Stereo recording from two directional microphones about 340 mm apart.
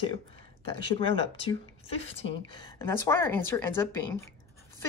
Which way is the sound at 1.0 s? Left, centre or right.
Centre.